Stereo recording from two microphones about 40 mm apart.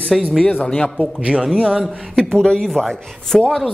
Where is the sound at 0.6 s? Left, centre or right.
Left.